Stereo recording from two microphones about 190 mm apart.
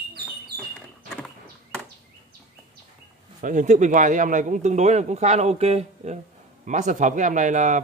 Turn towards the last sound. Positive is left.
turn(degrees=-40)  # may be behind; listen again after turning